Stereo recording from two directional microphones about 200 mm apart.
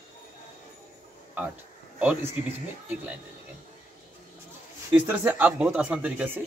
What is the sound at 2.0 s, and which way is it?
Speech, 5° right (ahead or behind).